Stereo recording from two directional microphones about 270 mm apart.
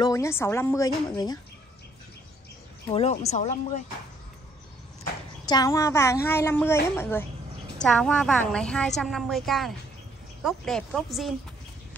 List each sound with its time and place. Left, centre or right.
0.0 s a woman's voice: centre
2.9 s speech: left
5.4 s a woman's voice: centre